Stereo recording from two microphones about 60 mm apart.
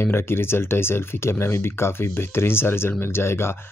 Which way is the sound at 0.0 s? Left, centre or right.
Left.